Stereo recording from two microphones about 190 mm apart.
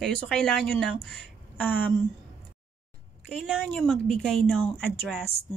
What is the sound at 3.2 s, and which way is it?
A woman's voice, centre (ahead or behind).